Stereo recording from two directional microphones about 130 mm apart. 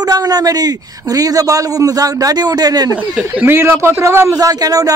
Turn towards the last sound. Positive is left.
turn(degrees=-30)  # may be behind; listen again after turning